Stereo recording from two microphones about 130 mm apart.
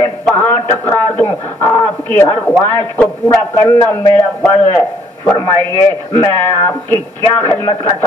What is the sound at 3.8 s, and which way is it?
Speech, 20° left (ahead or behind).